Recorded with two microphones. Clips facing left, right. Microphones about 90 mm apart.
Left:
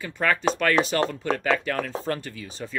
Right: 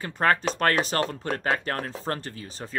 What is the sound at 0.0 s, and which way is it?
Speech, 40° right (ahead or behind).